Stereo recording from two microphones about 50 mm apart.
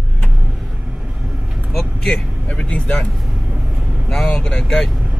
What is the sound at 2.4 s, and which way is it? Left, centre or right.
Vehicle, left.